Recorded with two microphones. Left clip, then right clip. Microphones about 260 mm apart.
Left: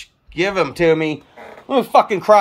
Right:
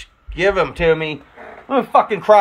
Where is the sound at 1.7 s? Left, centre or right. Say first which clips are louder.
Left 1 dB; left.